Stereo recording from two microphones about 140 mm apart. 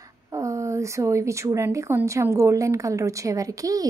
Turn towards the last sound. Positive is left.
turn(degrees=-25)  # may be behind; listen again after turning